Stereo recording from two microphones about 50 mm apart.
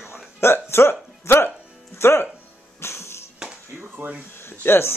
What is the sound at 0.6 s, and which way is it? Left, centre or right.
Speech, left.